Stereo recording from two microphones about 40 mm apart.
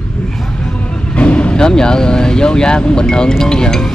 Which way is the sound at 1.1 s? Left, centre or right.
Left.